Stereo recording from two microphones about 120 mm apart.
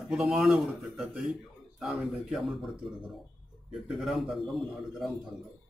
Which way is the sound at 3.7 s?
Centre (ahead or behind).